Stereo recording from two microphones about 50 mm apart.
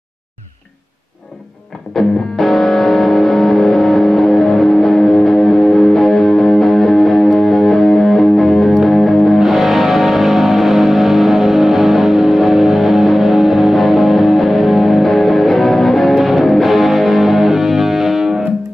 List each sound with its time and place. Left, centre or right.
2.0 s music: centre
9.4 s music: centre